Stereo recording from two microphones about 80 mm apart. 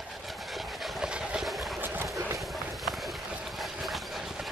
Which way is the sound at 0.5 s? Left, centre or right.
Centre.